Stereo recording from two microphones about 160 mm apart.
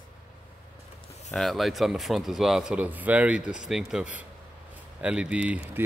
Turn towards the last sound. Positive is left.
turn(degrees=-10)  # may be behind; listen again after turning